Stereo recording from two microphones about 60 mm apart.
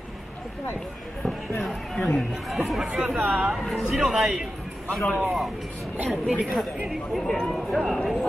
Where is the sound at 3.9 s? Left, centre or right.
Centre.